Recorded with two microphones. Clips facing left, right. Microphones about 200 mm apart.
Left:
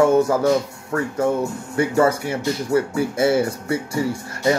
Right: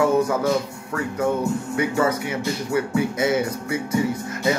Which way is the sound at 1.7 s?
30° left (ahead or behind).